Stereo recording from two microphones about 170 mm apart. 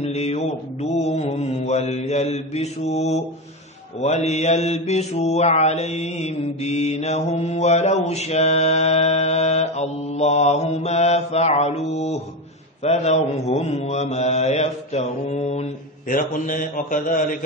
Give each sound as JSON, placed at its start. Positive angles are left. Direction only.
{"t": 0.0, "sound": "mantra", "side_deg": 40}
{"t": 16.1, "sound": "a man's voice", "side_deg": 55}